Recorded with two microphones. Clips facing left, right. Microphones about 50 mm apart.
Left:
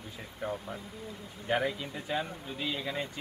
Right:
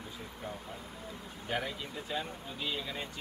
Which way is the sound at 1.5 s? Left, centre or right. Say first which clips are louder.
Left 6 dB; centre.